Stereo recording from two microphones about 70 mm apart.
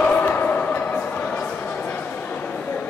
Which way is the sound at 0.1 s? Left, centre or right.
Left.